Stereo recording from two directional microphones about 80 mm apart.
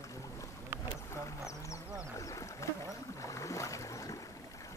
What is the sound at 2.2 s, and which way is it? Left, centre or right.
Boat, left.